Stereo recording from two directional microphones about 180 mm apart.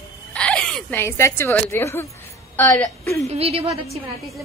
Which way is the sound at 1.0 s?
15° left (ahead or behind).